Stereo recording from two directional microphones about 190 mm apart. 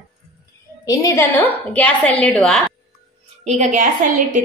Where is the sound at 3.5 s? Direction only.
40° right (ahead or behind).